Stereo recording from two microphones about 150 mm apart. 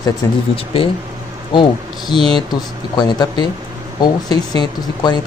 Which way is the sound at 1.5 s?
30° left (ahead or behind).